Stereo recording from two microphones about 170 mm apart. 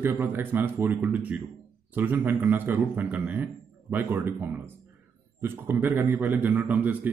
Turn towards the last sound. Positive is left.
turn(degrees=-10)  # may be behind; listen again after turning